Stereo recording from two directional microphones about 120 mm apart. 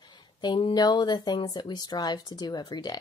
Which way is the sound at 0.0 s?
40° left (ahead or behind).